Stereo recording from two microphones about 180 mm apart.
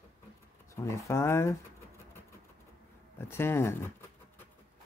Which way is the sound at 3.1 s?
15° left (ahead or behind).